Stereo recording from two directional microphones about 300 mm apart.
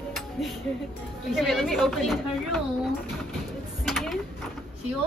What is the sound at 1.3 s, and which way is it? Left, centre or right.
A woman's voice, centre.